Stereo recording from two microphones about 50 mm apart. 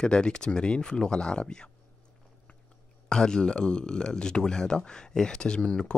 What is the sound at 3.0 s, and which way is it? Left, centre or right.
Speech, centre.